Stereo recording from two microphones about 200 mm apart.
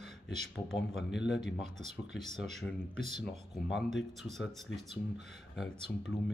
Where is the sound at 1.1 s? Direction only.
60° left (ahead or behind).